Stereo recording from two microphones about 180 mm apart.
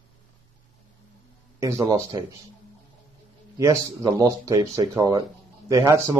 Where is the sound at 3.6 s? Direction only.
15° right (ahead or behind).